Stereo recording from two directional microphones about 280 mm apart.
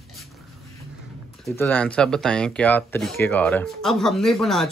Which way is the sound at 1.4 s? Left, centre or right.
Centre.